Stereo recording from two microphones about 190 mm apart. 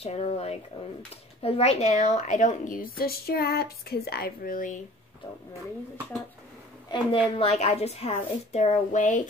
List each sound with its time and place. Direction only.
0.0 s a woman's voice: 35° left (ahead or behind)
6.9 s a woman's voice: 30° left (ahead or behind)